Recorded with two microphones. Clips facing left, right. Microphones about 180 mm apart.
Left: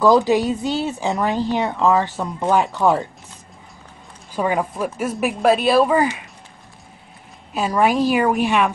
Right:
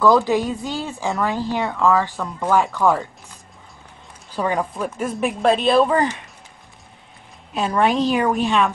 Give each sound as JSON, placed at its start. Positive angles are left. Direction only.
{"t": 0.0, "sound": "a woman's voice", "side_deg": 20}
{"t": 4.4, "sound": "speech", "side_deg": 5}
{"t": 7.5, "sound": "speech", "side_deg": 5}